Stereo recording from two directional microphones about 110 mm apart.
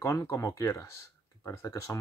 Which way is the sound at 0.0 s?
25° left (ahead or behind).